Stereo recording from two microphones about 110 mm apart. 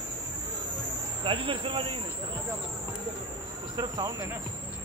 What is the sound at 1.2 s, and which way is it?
Speech, 50° right (ahead or behind).